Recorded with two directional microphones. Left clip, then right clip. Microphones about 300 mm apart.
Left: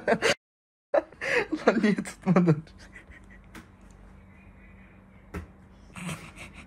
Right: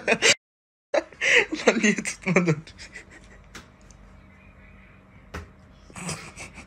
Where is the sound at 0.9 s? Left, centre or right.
Centre.